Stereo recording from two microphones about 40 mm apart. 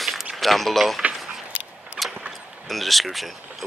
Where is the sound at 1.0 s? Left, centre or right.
Right.